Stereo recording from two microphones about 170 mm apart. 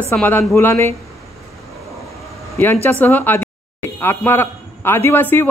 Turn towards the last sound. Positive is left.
turn(degrees=10)  # may be behind; listen again after turning